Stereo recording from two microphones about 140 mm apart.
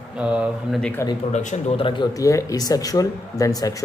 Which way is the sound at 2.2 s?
25° left (ahead or behind).